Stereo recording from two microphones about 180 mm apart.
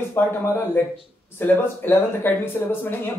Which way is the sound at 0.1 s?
15° left (ahead or behind).